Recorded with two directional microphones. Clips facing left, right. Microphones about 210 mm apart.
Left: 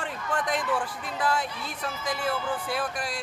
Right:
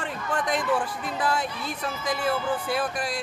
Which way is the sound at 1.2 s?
Centre (ahead or behind).